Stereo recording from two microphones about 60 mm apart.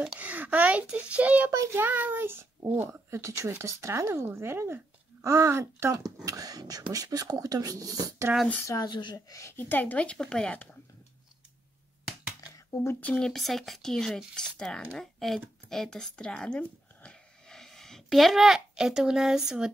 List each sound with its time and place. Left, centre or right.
0.2 s a child's voice: right
1.5 s speech: right
1.8 s a child's voice: right
2.9 s speech: right
3.6 s speech: right
6.2 s speech: right
8.3 s a child's voice: right
8.6 s speech: left
9.6 s speech: left
10.0 s speech: centre
10.5 s speech: left
12.0 s a sound: centre
13.2 s speech: centre
15.0 s speech: centre